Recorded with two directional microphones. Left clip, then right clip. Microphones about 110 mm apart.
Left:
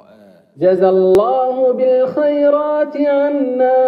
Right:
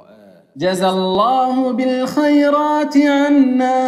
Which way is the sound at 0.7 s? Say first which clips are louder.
Left 4 dB; 35° left (ahead or behind).